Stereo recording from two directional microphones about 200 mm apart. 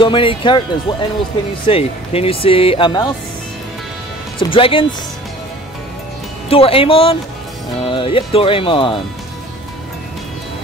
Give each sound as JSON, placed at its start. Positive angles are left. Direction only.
{"t": 0.0, "sound": "speech", "side_deg": 25}
{"t": 4.4, "sound": "speech", "side_deg": 25}
{"t": 6.5, "sound": "speech", "side_deg": 30}